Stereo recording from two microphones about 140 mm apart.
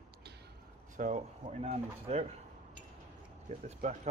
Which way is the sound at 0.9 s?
60° right (ahead or behind).